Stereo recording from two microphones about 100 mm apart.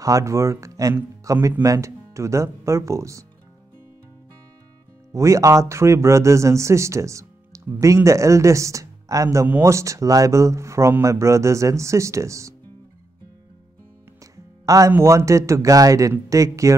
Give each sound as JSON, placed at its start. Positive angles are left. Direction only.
{"t": 0.0, "sound": "speech", "side_deg": -30}
{"t": 5.1, "sound": "speech", "side_deg": -30}
{"t": 14.2, "sound": "music", "side_deg": -35}
{"t": 14.9, "sound": "speech", "side_deg": -30}